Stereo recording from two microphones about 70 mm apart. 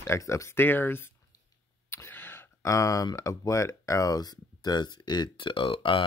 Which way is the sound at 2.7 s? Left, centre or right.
Left.